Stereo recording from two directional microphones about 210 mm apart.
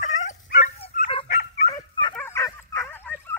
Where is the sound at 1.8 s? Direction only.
20° left (ahead or behind).